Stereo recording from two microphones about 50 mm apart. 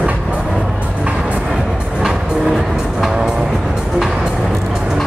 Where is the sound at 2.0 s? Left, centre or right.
Centre.